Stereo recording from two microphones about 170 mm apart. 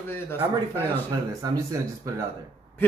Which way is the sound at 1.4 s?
20° right (ahead or behind).